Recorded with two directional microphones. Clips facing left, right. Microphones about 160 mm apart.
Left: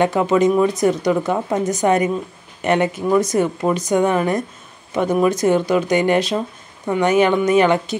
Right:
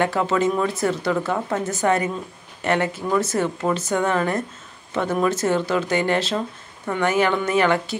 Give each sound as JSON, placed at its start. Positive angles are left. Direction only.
{"t": 0.0, "sound": "a woman's voice", "side_deg": 15}